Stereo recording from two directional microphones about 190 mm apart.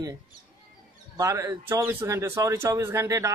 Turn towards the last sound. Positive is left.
turn(degrees=-15)  # may be behind; listen again after turning